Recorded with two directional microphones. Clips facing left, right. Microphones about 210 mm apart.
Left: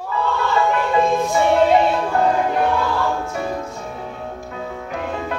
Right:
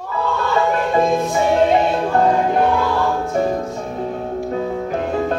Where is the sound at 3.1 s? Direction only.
40° right (ahead or behind).